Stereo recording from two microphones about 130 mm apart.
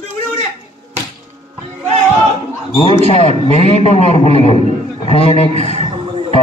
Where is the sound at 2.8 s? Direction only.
50° left (ahead or behind).